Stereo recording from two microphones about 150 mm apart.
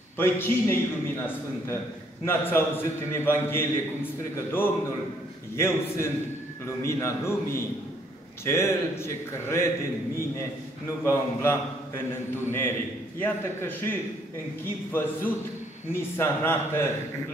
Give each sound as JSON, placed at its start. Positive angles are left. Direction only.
{"t": 0.2, "sound": "a man's voice", "side_deg": 15}
{"t": 2.2, "sound": "a man's voice", "side_deg": 15}
{"t": 11.1, "sound": "a man's voice", "side_deg": 15}